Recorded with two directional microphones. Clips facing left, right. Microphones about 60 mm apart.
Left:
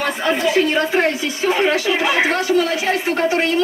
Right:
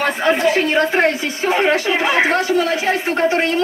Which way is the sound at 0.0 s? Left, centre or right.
Right.